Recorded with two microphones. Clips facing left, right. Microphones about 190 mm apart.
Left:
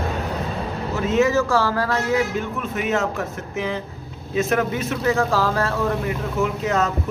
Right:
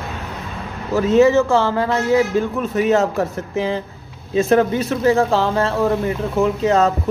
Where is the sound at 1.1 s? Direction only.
30° right (ahead or behind).